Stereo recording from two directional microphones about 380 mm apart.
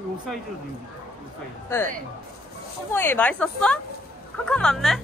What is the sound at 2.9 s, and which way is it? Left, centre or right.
A woman's voice, centre.